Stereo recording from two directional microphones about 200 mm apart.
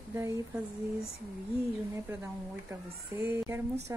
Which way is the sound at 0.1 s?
15° right (ahead or behind).